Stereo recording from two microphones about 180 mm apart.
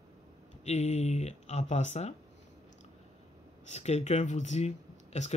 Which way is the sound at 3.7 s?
35° left (ahead or behind).